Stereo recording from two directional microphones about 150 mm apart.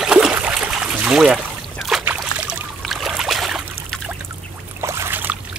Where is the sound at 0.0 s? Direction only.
5° right (ahead or behind).